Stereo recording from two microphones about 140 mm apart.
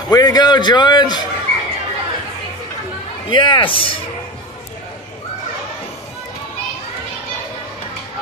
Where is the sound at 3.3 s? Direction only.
35° left (ahead or behind).